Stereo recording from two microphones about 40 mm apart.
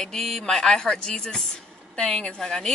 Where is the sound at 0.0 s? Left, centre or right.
Centre.